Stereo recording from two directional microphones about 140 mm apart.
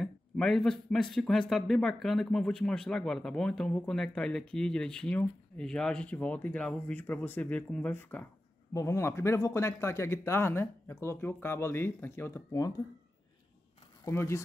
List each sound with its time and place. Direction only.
0.0 s a man's voice: 5° left (ahead or behind); by 12.7 s 20° left (ahead or behind)
14.0 s speech: 20° left (ahead or behind)